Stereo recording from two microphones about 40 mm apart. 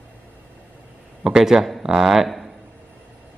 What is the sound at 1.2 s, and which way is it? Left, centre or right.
A man's voice, centre.